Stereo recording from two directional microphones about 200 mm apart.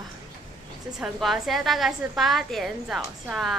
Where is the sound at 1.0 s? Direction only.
Centre (ahead or behind).